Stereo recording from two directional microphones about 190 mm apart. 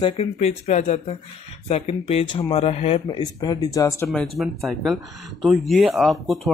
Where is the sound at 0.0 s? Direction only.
30° left (ahead or behind); by 4.1 s 15° left (ahead or behind).